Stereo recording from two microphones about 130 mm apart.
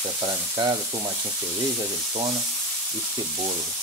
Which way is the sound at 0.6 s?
40° right (ahead or behind).